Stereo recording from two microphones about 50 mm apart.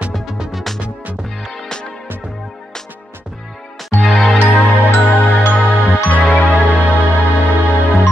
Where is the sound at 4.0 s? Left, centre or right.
Centre.